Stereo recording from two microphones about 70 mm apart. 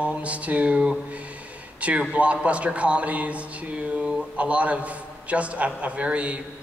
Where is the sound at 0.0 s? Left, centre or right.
Centre.